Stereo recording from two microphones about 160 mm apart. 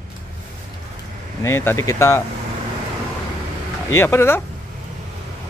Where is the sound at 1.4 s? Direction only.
15° left (ahead or behind).